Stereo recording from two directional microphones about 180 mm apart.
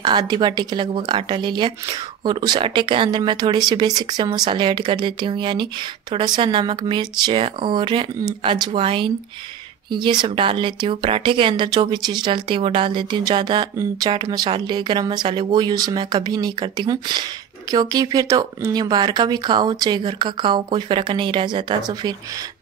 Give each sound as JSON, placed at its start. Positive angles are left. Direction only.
{"t": 0.0, "sound": "speech", "side_deg": -25}